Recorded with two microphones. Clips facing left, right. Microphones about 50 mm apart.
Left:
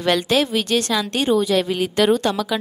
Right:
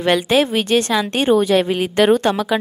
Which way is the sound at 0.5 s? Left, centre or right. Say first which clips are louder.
Right 3 dB; right.